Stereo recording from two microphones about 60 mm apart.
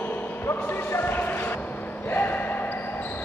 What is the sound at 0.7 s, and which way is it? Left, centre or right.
Basketball bounce, left.